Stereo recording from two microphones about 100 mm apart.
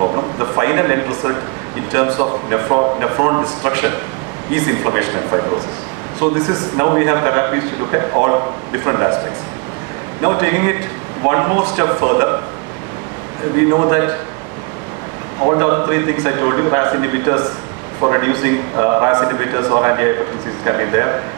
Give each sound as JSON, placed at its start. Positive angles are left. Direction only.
{"t": 0.0, "sound": "a sound", "side_deg": -35}
{"t": 1.9, "sound": "a man's voice", "side_deg": -25}
{"t": 10.2, "sound": "a man's voice", "side_deg": -25}
{"t": 13.6, "sound": "a man's voice", "side_deg": -30}
{"t": 15.6, "sound": "a man's voice", "side_deg": -25}